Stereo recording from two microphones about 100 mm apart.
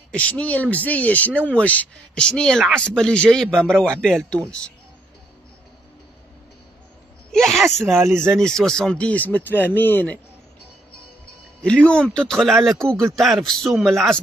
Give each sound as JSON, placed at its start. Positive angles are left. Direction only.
{"t": 0.1, "sound": "speech", "side_deg": 15}
{"t": 7.3, "sound": "speech", "side_deg": 0}
{"t": 8.0, "sound": "speech", "side_deg": -25}
{"t": 8.3, "sound": "a man's voice", "side_deg": 5}
{"t": 11.6, "sound": "a man's voice", "side_deg": 10}